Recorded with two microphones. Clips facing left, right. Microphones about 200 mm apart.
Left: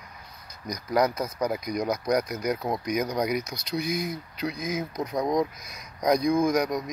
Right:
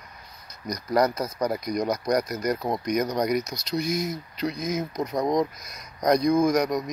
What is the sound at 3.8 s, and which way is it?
Speech, 60° left (ahead or behind).